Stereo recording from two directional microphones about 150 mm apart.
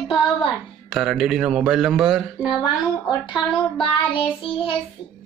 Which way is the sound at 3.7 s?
35° left (ahead or behind).